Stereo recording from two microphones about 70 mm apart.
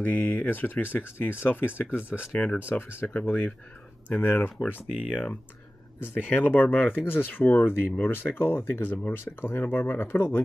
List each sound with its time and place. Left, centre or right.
0.0 s speech: left
4.7 s speech: centre
5.9 s speech: left